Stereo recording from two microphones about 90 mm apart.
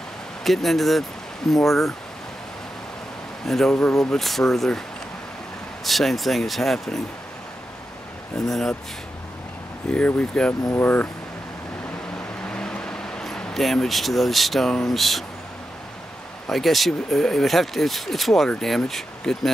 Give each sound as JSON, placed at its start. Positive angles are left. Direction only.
{"t": 0.4, "sound": "speech", "side_deg": 0}
{"t": 3.4, "sound": "speech", "side_deg": 5}
{"t": 5.9, "sound": "speech", "side_deg": 0}
{"t": 8.5, "sound": "speech", "side_deg": 5}
{"t": 9.8, "sound": "speech", "side_deg": 15}
{"t": 12.4, "sound": "vehicle", "side_deg": 10}
{"t": 16.4, "sound": "speech", "side_deg": 0}